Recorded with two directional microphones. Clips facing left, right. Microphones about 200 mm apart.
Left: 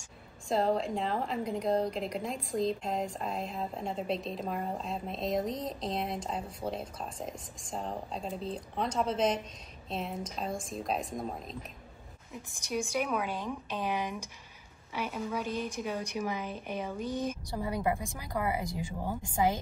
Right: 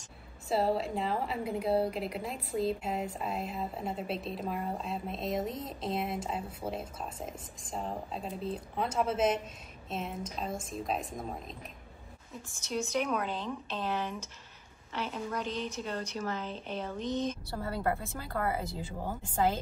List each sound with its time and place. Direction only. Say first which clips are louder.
0.5 s a woman's voice: left 1 dB; 5° right (ahead or behind)
12.4 s a woman's voice: even; 15° left (ahead or behind)